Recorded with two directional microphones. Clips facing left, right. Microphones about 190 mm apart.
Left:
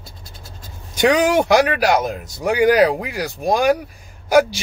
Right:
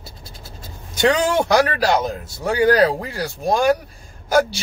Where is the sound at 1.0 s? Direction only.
15° left (ahead or behind).